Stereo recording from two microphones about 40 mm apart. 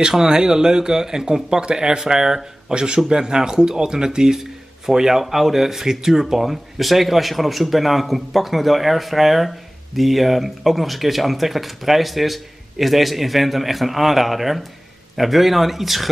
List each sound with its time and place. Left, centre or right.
0.1 s speech: centre